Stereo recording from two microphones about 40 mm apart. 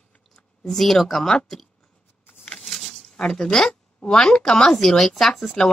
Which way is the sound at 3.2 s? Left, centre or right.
Centre.